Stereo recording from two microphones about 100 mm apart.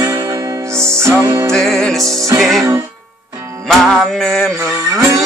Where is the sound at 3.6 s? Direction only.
5° left (ahead or behind).